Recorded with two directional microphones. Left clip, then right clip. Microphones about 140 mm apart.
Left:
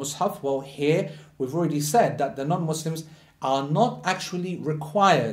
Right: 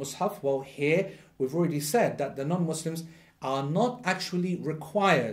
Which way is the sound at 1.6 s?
45° right (ahead or behind).